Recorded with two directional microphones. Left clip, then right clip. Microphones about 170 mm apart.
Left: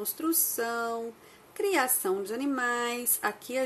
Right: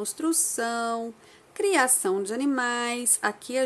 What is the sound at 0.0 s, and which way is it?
A woman's voice, 25° right (ahead or behind).